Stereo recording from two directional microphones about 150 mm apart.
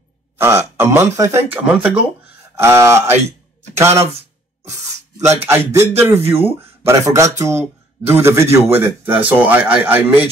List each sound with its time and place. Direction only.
0.4 s speech: 15° right (ahead or behind)
5.2 s speech: 15° right (ahead or behind)